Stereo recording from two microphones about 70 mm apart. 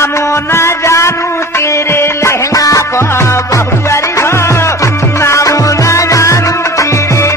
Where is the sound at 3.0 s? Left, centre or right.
Left.